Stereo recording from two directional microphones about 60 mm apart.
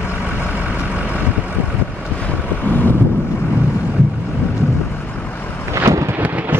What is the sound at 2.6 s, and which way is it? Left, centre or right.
Wind noise, left.